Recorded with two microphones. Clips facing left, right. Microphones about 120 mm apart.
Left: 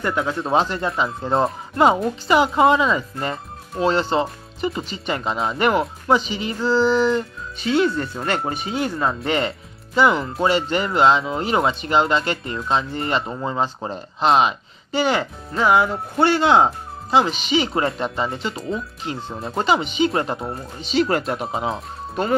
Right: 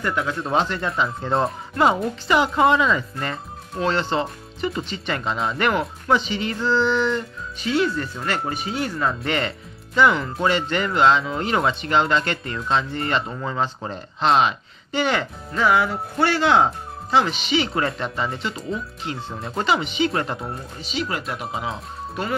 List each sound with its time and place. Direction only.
0.0 s speech: 25° left (ahead or behind)
7.6 s speech: 30° left (ahead or behind)